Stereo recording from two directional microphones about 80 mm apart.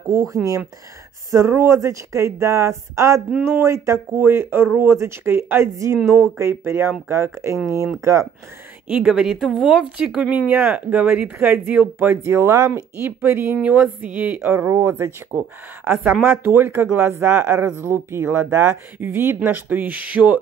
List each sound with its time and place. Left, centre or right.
0.0 s speech: right
1.3 s speech: right
8.8 s speech: centre
12.2 s speech: right; by 14.5 s centre
14.5 s speech: right; by 20.3 s centre